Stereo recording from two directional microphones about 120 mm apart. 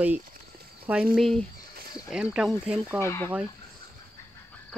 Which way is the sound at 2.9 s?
20° left (ahead or behind).